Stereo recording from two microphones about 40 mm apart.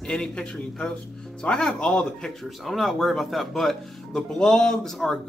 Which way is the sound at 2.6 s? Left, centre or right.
Centre.